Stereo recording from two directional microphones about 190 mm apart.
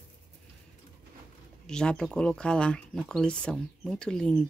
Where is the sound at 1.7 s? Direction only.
5° left (ahead or behind).